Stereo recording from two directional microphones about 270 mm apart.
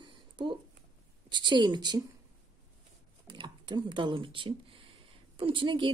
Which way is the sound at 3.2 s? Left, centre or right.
Centre.